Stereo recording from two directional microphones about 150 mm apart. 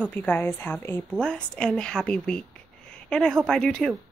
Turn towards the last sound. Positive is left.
turn(degrees=5)  # may be behind; listen again after turning